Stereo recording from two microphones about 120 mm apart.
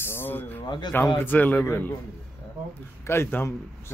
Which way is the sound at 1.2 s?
15° left (ahead or behind).